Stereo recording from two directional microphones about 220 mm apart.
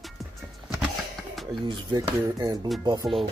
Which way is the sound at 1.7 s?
15° right (ahead or behind).